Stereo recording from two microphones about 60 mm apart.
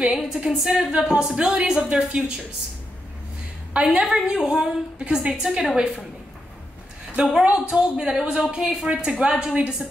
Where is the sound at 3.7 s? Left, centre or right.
Centre.